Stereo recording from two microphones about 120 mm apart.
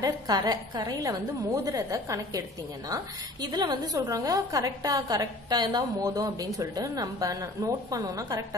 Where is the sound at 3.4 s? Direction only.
35° right (ahead or behind).